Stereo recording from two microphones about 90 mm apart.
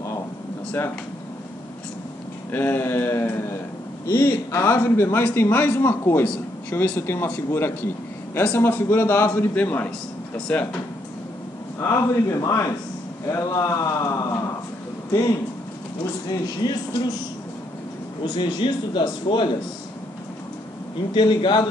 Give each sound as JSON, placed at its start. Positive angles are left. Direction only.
{"t": 0.7, "sound": "speech", "side_deg": 25}
{"t": 2.5, "sound": "a man's voice", "side_deg": 25}
{"t": 11.8, "sound": "speech", "side_deg": 35}
{"t": 16.0, "sound": "speech", "side_deg": 50}
{"t": 18.2, "sound": "a man's voice", "side_deg": 55}
{"t": 21.1, "sound": "a man's voice", "side_deg": 60}